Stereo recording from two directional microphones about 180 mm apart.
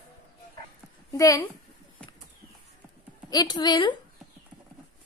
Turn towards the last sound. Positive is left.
turn(degrees=25)  # may be behind; listen again after turning